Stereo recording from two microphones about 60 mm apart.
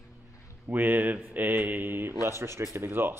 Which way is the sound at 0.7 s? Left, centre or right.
Right.